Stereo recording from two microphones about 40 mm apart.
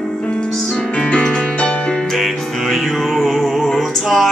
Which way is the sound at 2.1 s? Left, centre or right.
Centre.